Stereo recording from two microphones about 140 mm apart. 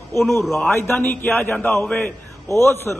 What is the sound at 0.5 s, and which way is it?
A man's voice, 15° left (ahead or behind).